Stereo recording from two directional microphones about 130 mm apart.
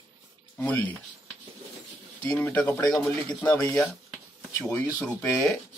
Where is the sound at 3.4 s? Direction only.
25° left (ahead or behind).